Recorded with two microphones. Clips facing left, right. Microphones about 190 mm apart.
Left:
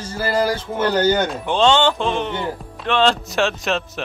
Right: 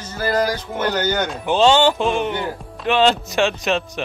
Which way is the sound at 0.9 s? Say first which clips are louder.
Left 6 dB; 30° left (ahead or behind).